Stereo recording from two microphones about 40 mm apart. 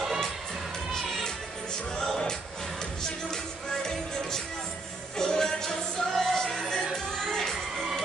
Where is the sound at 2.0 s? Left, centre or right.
Centre.